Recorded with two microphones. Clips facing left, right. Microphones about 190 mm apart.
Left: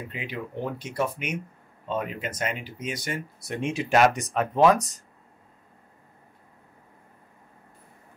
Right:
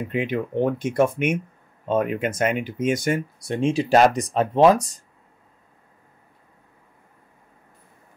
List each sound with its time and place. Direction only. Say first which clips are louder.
0.1 s speech: right 10 dB; 50° right (ahead or behind)
3.3 s speech: right 7 dB; 30° right (ahead or behind)